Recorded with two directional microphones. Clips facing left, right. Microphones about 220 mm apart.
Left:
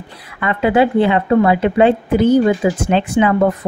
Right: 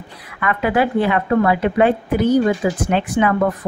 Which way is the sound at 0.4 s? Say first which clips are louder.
Left 4 dB; 25° left (ahead or behind).